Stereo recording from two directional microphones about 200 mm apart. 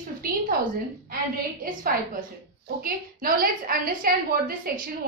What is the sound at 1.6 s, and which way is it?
A woman's voice, 45° right (ahead or behind).